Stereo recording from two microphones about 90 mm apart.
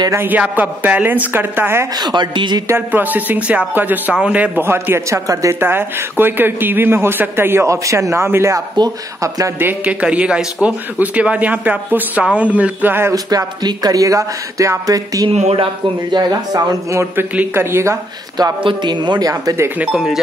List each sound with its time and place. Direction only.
0.1 s speech: 25° right (ahead or behind)
2.0 s a woman's voice: 55° right (ahead or behind)
2.7 s speech: 20° right (ahead or behind); by 5.6 s 40° right (ahead or behind)
5.6 s speech: 25° right (ahead or behind)
8.7 s speech: 45° right (ahead or behind)
9.6 s a man's voice: 20° right (ahead or behind)
13.1 s speech: 45° right (ahead or behind)
15.2 s speech: 75° right (ahead or behind)
16.2 s speech: 45° right (ahead or behind)
16.9 s speech: 25° right (ahead or behind)
18.6 s speech: 65° right (ahead or behind); by 19.7 s 35° right (ahead or behind)
19.8 s speech: 5° right (ahead or behind)